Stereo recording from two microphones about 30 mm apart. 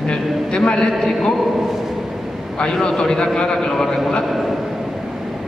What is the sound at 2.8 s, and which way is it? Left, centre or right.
A man's voice, centre.